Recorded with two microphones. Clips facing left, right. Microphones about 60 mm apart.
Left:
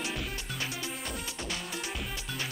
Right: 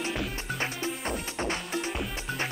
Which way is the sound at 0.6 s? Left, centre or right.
Right.